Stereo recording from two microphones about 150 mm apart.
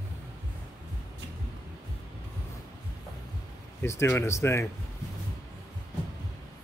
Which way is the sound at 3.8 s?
15° left (ahead or behind).